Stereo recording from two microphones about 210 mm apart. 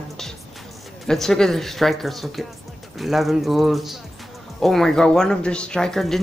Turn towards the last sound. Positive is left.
turn(degrees=0)  # may be behind; listen again after turning